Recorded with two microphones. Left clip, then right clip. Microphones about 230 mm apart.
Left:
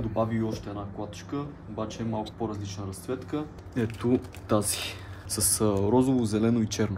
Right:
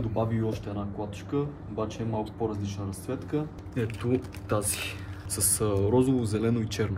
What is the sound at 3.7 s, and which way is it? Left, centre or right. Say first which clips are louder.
Speech: left 2 dB; left.